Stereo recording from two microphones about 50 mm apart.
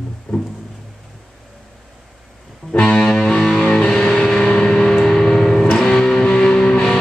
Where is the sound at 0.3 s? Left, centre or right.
Centre.